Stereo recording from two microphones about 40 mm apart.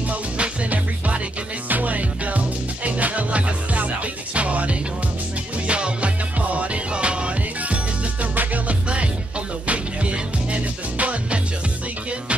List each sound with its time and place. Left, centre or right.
0.1 s music: right